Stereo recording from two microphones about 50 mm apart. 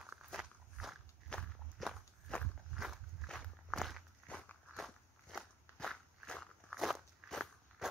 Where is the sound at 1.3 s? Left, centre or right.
Centre.